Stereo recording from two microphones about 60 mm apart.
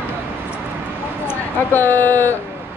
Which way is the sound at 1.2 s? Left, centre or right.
Left.